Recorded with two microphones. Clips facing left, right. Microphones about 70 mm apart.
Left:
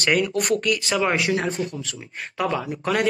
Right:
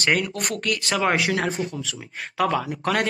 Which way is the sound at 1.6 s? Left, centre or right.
Left.